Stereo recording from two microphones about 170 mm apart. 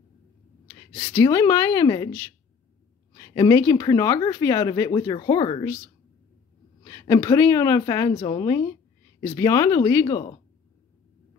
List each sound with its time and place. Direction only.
0.9 s speech: 10° left (ahead or behind); by 5.7 s 25° left (ahead or behind)
6.8 s speech: 20° left (ahead or behind)